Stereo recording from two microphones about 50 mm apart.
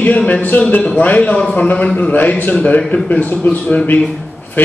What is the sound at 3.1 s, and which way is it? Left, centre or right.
Speech, left.